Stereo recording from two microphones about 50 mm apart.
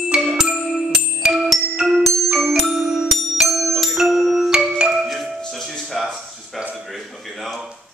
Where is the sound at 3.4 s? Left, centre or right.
Centre.